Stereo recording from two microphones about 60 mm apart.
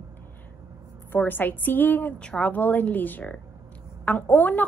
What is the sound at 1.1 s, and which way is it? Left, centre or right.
A woman's voice, left.